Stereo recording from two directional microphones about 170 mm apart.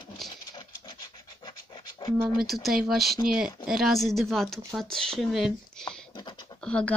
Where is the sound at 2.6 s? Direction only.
Centre (ahead or behind).